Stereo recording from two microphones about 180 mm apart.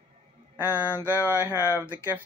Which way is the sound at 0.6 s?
10° right (ahead or behind).